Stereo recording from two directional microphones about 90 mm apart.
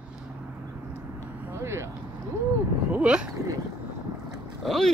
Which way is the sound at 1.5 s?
30° right (ahead or behind).